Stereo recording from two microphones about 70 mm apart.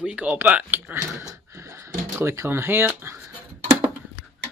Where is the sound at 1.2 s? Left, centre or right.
Right.